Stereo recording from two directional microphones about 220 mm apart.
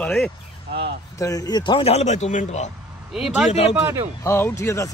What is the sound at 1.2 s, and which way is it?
Speech, 15° left (ahead or behind).